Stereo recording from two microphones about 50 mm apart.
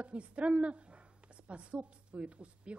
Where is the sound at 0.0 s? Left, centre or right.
Right.